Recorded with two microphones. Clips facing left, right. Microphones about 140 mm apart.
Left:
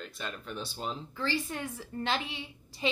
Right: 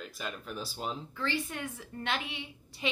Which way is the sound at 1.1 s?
35° left (ahead or behind).